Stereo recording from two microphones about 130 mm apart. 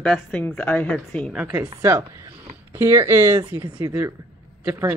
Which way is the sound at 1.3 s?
10° right (ahead or behind).